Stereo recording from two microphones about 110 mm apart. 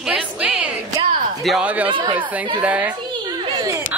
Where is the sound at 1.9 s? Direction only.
50° right (ahead or behind).